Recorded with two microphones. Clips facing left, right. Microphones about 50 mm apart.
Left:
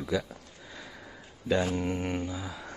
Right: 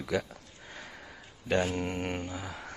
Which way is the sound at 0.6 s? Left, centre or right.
Right.